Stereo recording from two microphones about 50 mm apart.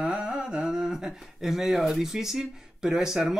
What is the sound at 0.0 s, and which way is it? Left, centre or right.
Speech, centre.